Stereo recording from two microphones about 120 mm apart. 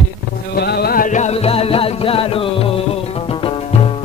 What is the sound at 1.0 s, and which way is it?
Music, 90° left.